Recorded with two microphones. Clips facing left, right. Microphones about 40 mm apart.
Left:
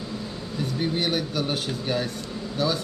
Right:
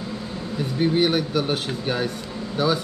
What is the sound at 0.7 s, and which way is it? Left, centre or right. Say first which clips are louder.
A man's voice: right 6 dB; centre.